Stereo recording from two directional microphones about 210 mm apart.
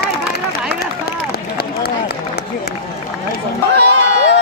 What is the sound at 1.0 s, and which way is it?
Run, 45° left (ahead or behind).